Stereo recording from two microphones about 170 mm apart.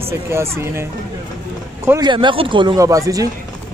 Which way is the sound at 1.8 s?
15° right (ahead or behind).